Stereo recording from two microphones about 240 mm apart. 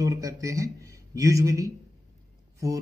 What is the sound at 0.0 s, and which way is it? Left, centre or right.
Speech, centre.